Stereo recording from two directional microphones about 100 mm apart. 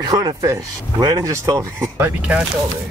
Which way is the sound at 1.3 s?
30° right (ahead or behind).